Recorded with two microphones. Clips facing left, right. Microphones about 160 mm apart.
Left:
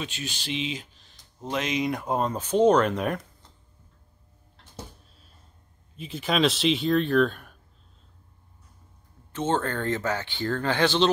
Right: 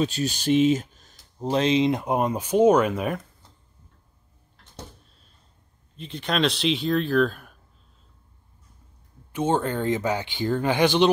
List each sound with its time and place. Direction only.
0.0 s speech: 40° right (ahead or behind); by 3.2 s 5° right (ahead or behind)
5.9 s speech: 5° left (ahead or behind)
9.3 s speech: 15° right (ahead or behind)